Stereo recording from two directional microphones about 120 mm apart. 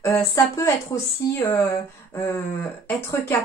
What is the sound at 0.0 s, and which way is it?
Speech, 20° left (ahead or behind).